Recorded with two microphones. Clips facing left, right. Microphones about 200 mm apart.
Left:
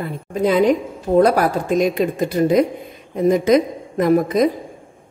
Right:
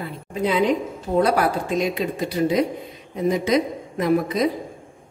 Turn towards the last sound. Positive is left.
turn(degrees=45)  # may be behind; listen again after turning